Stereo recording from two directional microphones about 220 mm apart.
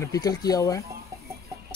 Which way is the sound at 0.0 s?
15° left (ahead or behind).